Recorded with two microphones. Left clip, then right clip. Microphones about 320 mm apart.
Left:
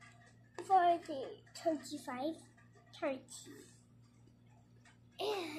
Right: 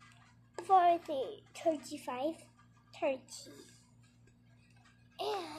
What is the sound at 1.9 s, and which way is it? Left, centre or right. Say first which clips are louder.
Speech: right 3 dB; centre.